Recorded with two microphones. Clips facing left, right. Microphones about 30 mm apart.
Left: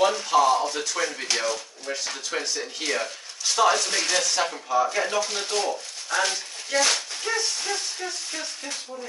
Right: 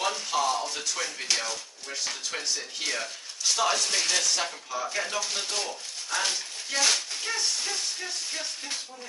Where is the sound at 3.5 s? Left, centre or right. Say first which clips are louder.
Left 5 dB; centre.